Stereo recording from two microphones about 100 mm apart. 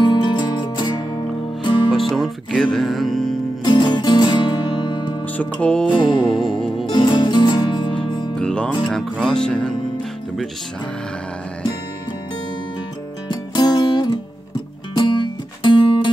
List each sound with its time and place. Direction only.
0.0 s music: 50° left (ahead or behind)
1.9 s music: centre (ahead or behind)
3.6 s music: 50° left (ahead or behind)
5.4 s speech: 10° left (ahead or behind)
5.9 s music: 55° left (ahead or behind)
6.2 s music: 5° left (ahead or behind)
6.9 s music: 50° left (ahead or behind)
8.4 s music: 10° left (ahead or behind)
8.8 s speech: 5° left (ahead or behind)
13.3 s music: 45° left (ahead or behind)